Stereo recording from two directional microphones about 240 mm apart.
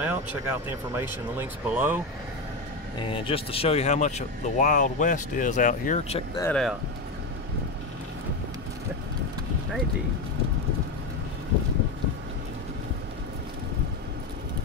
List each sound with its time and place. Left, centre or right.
0.0 s speech: centre
3.1 s speech: left
6.4 s speech: centre